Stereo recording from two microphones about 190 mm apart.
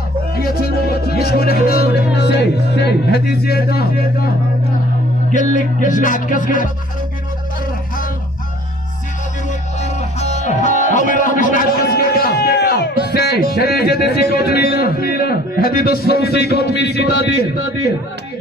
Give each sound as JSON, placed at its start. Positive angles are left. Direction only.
{"t": 0.6, "sound": "music", "side_deg": 55}
{"t": 3.4, "sound": "a man's voice", "side_deg": 55}
{"t": 5.3, "sound": "music", "side_deg": 40}
{"t": 9.5, "sound": "music", "side_deg": 35}
{"t": 13.5, "sound": "a man's voice", "side_deg": 55}